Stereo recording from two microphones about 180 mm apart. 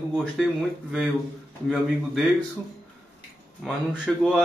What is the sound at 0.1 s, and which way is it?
Speech, centre (ahead or behind).